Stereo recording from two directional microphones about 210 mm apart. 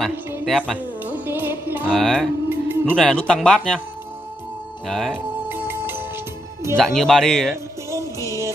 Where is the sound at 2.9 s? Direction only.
5° left (ahead or behind).